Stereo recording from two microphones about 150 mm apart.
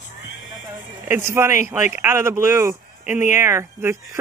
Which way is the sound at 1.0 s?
15° right (ahead or behind).